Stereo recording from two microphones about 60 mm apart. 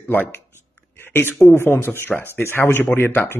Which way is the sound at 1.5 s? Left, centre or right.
Left.